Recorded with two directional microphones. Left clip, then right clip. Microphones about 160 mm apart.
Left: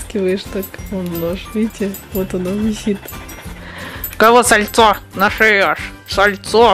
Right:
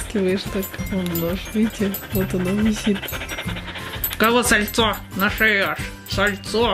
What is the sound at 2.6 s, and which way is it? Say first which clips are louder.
Speech: left 2 dB; 10° left (ahead or behind).